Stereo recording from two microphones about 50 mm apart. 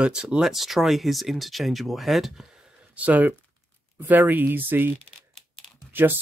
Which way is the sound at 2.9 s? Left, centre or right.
Right.